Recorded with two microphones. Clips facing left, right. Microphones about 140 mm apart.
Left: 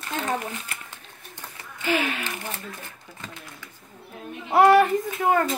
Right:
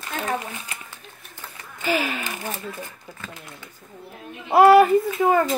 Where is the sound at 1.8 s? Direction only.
5° right (ahead or behind).